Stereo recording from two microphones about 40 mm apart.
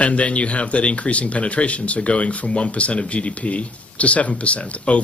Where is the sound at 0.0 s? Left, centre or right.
Left.